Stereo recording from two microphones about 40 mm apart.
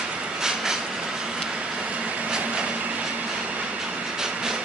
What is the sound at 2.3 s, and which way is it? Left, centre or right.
Vehicle, right.